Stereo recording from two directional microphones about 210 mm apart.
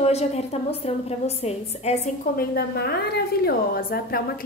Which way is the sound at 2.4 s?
50° left (ahead or behind).